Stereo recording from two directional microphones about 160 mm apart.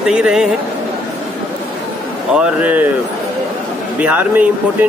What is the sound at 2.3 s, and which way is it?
Speech, 10° right (ahead or behind).